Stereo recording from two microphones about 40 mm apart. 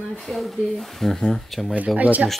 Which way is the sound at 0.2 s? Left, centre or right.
Centre.